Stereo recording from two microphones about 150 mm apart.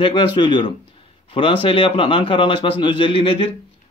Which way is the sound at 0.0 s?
35° left (ahead or behind).